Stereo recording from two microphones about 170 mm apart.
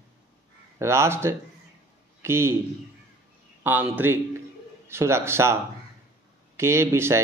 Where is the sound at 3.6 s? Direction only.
10° right (ahead or behind).